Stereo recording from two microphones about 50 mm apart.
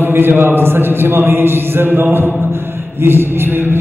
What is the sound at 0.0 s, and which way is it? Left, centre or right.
A man's voice, right.